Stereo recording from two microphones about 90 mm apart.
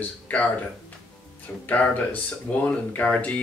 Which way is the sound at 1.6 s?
20° left (ahead or behind).